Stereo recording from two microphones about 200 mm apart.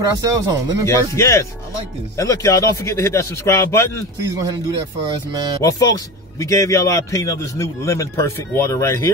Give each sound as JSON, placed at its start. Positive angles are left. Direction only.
{"t": 0.0, "sound": "speech", "side_deg": -20}
{"t": 0.8, "sound": "a man's voice", "side_deg": 15}
{"t": 5.6, "sound": "a man's voice", "side_deg": 15}